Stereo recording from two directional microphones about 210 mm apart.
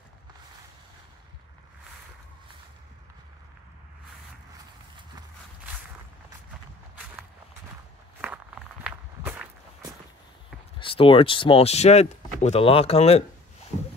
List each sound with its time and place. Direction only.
8.2 s walk: 5° right (ahead or behind)
10.8 s speech: 25° left (ahead or behind)